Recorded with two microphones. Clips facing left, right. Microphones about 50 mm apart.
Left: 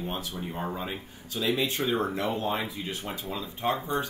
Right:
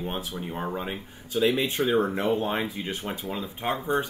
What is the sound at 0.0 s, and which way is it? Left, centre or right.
Speech, right.